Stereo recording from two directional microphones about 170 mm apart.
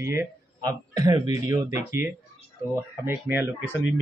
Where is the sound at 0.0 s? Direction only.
15° right (ahead or behind).